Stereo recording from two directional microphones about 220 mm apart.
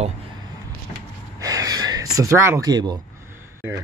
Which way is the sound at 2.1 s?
15° right (ahead or behind).